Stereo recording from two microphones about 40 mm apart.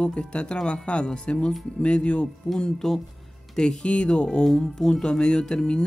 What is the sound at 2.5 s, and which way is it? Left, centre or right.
Speech, centre.